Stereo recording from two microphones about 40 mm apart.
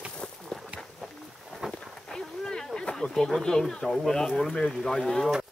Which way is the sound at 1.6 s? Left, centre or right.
Centre.